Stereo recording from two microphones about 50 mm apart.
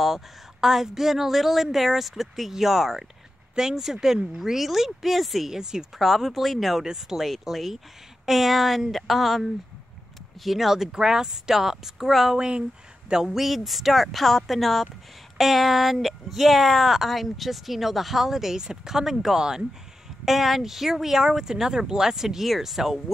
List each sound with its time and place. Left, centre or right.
0.0 s speech: centre
5.6 s speech: centre
5.9 s speech: centre
12.4 s speech: centre